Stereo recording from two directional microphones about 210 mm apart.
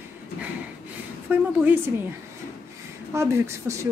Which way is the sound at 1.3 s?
10° right (ahead or behind).